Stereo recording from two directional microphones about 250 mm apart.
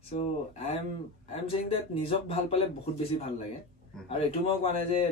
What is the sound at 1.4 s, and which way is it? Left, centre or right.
Speech, left.